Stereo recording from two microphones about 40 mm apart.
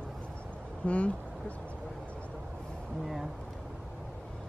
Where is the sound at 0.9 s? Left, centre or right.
Left.